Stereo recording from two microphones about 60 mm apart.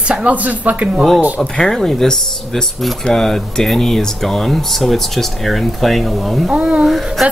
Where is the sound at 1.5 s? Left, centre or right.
Centre.